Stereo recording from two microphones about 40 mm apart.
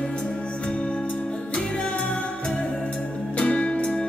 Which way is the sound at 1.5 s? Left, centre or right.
Left.